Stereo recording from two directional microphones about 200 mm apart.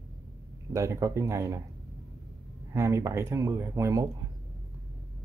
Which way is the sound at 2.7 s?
15° right (ahead or behind).